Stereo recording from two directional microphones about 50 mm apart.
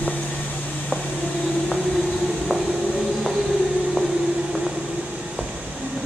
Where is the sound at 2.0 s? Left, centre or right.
Centre.